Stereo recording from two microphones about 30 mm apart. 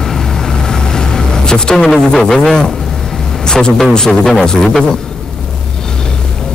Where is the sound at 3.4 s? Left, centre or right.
Left.